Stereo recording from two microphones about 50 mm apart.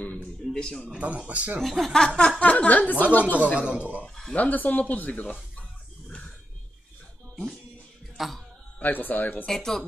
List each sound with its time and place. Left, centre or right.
0.5 s speech: centre
0.8 s speech: right
1.6 s speech: centre; by 3.3 s left
3.5 s speech: right
4.0 s speech: centre
4.4 s a sound: left
8.2 s a man's voice: centre
8.8 s speech: left
9.5 s speech: centre